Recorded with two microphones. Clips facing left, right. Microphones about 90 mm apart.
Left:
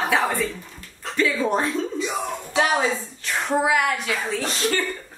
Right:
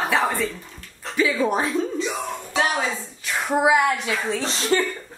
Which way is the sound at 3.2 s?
5° right (ahead or behind).